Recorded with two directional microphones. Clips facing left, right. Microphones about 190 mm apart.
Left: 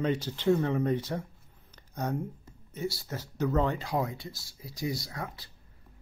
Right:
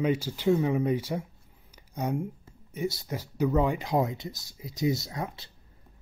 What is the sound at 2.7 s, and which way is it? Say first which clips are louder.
Speech: right 3 dB; 20° right (ahead or behind).